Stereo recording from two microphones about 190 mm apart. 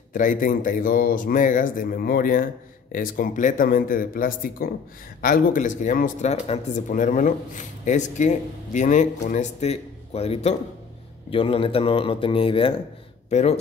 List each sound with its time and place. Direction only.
0.1 s speech: 45° left (ahead or behind)